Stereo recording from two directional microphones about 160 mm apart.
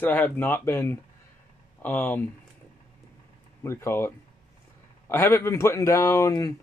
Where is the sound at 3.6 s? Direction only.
15° left (ahead or behind).